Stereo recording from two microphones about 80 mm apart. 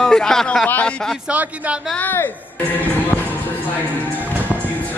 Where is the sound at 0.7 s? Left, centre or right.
Left.